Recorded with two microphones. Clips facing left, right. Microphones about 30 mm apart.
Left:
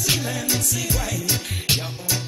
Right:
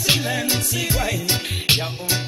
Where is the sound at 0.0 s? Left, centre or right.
Right.